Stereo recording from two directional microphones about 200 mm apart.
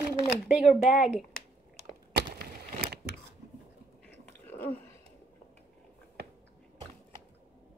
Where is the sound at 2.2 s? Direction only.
55° right (ahead or behind).